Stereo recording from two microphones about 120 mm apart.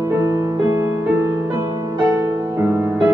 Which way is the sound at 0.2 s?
25° right (ahead or behind).